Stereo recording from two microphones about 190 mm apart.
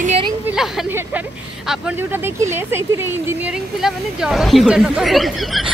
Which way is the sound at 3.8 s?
Centre (ahead or behind).